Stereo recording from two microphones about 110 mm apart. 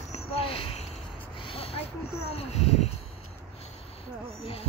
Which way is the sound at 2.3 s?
70° left (ahead or behind).